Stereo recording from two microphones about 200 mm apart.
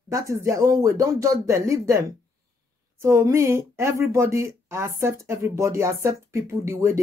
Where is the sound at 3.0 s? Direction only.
15° right (ahead or behind).